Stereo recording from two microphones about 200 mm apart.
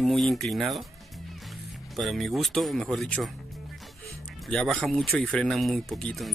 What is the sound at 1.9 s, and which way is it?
Speech, centre (ahead or behind).